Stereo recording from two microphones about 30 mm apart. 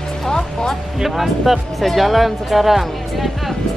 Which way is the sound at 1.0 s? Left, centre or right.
Centre.